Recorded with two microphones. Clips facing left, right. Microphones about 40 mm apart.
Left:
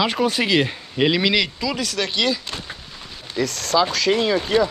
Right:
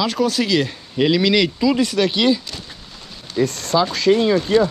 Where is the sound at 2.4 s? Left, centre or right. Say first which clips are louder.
Left 2 dB; left.